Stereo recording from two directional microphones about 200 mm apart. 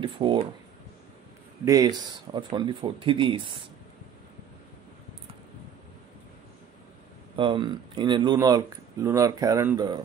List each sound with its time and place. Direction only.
0.0 s a sound: 25° right (ahead or behind)
1.6 s speech: 15° right (ahead or behind)
7.3 s speech: 25° right (ahead or behind)